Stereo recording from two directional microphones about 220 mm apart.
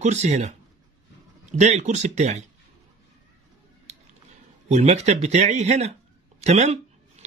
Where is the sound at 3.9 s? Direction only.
30° right (ahead or behind).